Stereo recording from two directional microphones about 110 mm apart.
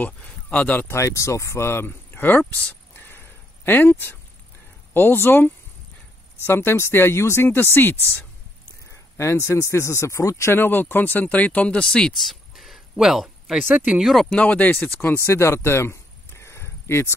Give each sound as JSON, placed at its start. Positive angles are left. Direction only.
{"t": 0.0, "sound": "speech", "side_deg": 15}
{"t": 8.9, "sound": "speech", "side_deg": 25}
{"t": 14.3, "sound": "speech", "side_deg": 15}
{"t": 15.0, "sound": "a sound", "side_deg": 20}